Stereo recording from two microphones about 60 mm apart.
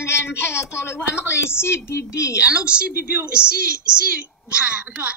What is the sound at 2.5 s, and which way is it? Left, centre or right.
A woman's voice, centre.